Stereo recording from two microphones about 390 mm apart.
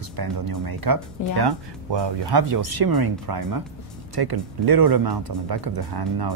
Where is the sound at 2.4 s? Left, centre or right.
Right.